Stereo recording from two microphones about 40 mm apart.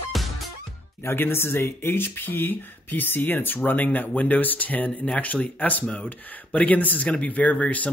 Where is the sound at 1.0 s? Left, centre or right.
Left.